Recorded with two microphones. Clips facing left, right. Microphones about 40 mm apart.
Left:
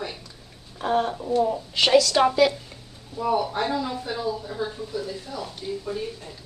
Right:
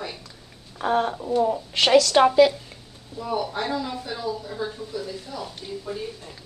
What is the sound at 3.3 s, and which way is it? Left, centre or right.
Speech, centre.